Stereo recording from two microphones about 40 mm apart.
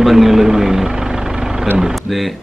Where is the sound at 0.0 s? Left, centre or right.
Centre.